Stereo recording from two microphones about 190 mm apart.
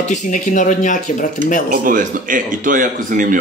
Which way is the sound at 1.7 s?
45° right (ahead or behind).